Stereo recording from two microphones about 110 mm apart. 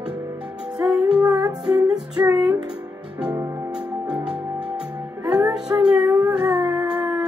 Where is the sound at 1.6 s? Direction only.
10° right (ahead or behind).